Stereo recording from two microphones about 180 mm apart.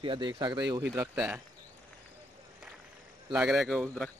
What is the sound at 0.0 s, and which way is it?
Speech, 25° right (ahead or behind).